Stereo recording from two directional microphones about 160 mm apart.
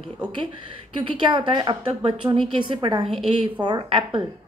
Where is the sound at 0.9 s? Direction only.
30° right (ahead or behind).